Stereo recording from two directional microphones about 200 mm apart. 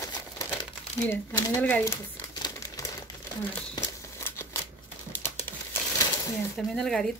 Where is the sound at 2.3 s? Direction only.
20° left (ahead or behind).